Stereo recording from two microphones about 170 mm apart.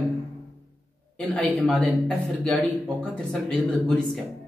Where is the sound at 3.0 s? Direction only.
5° left (ahead or behind).